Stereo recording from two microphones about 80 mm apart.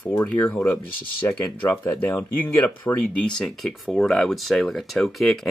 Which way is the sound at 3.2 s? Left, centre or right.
Centre.